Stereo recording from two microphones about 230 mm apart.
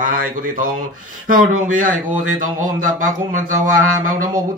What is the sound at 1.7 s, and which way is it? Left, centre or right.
Mantra, right.